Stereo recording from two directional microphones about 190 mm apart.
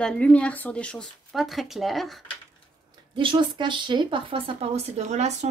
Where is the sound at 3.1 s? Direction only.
25° right (ahead or behind).